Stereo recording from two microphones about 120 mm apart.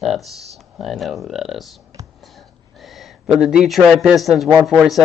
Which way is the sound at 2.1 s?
Centre (ahead or behind).